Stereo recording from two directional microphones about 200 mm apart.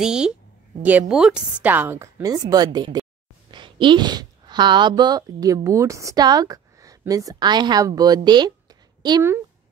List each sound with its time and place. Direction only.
0.0 s a woman's voice: 5° right (ahead or behind)